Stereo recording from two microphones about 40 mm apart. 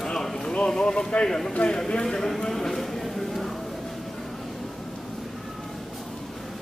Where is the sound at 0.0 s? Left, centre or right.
Centre.